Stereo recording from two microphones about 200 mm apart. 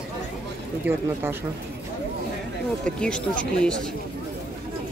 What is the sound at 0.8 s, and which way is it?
Speech, 10° right (ahead or behind).